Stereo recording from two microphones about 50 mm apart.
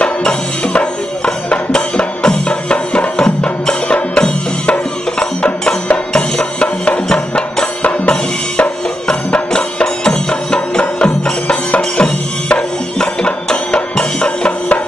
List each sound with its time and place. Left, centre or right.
0.0 s music: centre